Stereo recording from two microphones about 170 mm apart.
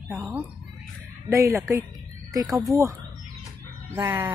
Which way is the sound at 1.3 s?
15° right (ahead or behind).